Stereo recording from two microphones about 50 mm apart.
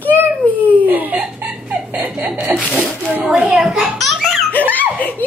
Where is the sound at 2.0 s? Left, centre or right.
Right.